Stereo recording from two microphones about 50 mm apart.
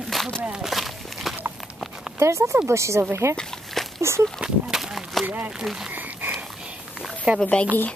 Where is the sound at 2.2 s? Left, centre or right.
Right.